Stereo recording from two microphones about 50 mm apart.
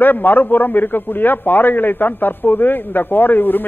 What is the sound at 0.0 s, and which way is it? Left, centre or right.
A man's voice, left.